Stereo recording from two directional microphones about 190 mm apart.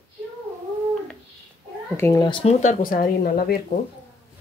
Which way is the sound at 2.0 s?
15° left (ahead or behind).